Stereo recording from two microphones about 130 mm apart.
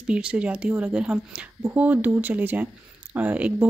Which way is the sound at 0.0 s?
10° right (ahead or behind).